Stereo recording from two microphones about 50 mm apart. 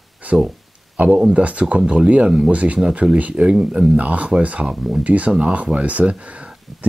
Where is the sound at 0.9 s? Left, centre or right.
Right.